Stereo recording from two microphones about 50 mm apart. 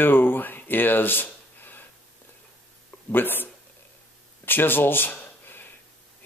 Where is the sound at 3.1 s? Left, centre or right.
Left.